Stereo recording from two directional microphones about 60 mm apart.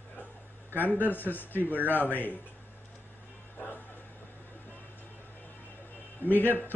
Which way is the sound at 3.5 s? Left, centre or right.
Left.